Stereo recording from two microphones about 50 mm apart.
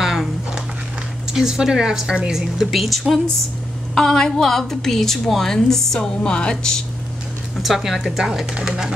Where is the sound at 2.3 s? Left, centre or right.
Centre.